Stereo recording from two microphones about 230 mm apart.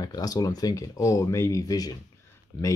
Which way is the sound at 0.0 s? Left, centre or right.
Centre.